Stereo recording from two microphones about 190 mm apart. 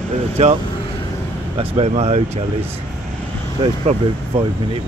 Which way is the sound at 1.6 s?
30° right (ahead or behind).